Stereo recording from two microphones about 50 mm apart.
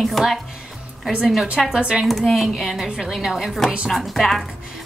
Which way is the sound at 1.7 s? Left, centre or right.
Centre.